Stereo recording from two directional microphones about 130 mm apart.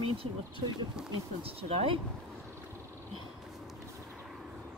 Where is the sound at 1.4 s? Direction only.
50° right (ahead or behind).